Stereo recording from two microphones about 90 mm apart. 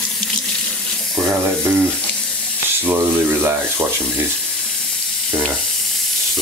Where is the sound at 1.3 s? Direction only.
20° right (ahead or behind).